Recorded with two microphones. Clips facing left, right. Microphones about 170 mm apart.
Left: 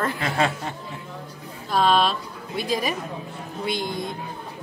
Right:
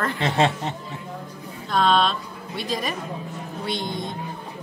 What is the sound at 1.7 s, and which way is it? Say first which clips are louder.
A woman's voice: even; 5° left (ahead or behind).